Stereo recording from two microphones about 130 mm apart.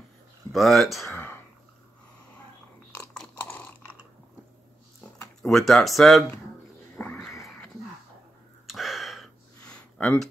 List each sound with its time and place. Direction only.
0.5 s speech: centre (ahead or behind)
1.1 s throat clearing: 15° left (ahead or behind)
2.9 s a sound: 10° left (ahead or behind)
5.4 s speech: centre (ahead or behind)
7.0 s a sound: 5° left (ahead or behind)
8.6 s gasp: centre (ahead or behind)